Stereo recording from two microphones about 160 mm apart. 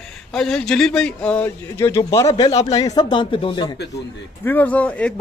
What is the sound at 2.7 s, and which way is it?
Speech, 25° left (ahead or behind).